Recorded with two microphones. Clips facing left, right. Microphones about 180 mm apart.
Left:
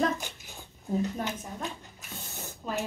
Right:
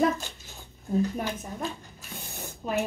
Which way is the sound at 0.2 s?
15° left (ahead or behind).